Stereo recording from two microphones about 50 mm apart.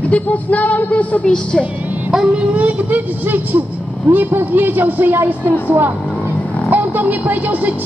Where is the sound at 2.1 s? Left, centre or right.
Centre.